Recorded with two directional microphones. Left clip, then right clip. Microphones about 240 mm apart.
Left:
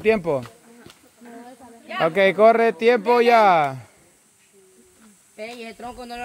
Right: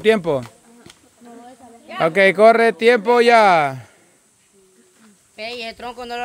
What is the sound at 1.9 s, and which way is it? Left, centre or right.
Speech, centre.